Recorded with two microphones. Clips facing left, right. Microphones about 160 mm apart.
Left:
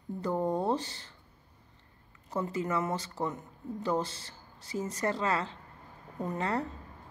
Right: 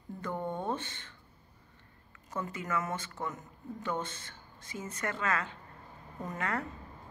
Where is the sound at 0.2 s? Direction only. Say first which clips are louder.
Left 6 dB; 35° left (ahead or behind).